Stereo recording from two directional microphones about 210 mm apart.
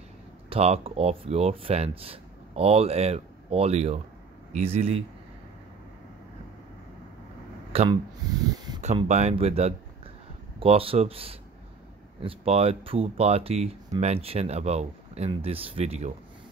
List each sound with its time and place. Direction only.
0.5 s speech: 30° right (ahead or behind)
7.7 s a sound: 25° right (ahead or behind)
9.0 s speech: 30° right (ahead or behind)